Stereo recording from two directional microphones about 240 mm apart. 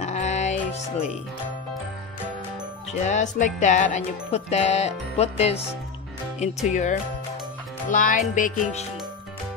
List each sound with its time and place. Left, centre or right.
0.0 s music: left
2.9 s speech: left